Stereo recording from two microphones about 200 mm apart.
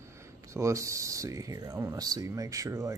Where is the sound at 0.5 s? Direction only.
15° right (ahead or behind).